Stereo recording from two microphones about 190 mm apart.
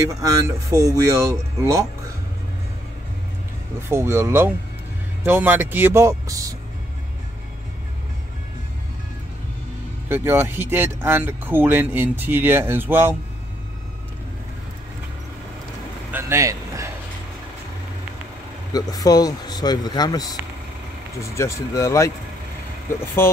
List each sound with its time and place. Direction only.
0.1 s speech: 20° right (ahead or behind)
3.9 s speech: 10° right (ahead or behind)
10.0 s speech: 10° right (ahead or behind)
16.1 s vehicle: 15° right (ahead or behind)
18.7 s speech: 20° left (ahead or behind)